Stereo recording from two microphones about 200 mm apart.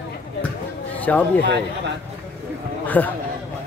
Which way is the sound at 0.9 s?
10° left (ahead or behind).